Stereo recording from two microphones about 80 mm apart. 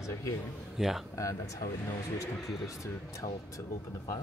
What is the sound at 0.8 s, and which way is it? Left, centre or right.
Speech, centre.